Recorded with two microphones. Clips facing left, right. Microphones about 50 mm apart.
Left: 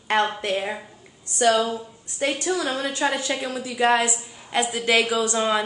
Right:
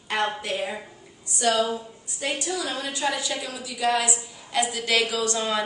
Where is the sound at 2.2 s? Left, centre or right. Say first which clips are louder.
Left 5 dB; left; by 5.6 s centre.